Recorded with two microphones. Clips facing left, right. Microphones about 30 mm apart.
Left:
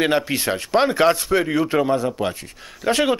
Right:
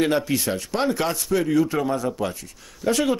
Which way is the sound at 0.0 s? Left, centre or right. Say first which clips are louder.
Left 2 dB; left.